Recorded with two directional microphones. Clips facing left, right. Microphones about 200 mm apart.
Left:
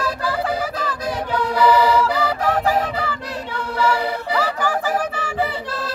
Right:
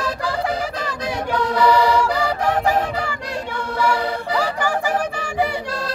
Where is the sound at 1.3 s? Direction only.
10° left (ahead or behind).